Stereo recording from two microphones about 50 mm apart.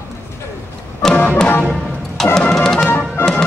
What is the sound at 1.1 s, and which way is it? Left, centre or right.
Music, left.